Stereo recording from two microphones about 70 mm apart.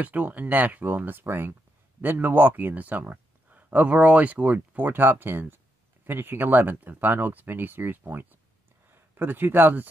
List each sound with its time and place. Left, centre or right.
0.0 s speech: right